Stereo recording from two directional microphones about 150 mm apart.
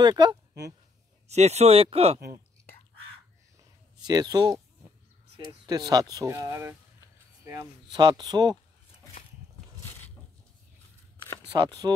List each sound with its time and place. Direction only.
0.0 s speech: 30° right (ahead or behind)
1.2 s speech: 45° right (ahead or behind)
4.0 s speech: 25° right (ahead or behind)
5.7 s speech: 25° right (ahead or behind)
7.9 s speech: 30° right (ahead or behind)
11.8 s speech: 25° right (ahead or behind)